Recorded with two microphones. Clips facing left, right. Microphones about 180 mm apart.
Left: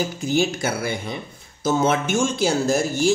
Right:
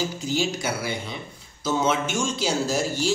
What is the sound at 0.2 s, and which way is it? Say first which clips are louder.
Speech: left 5 dB; 50° left (ahead or behind).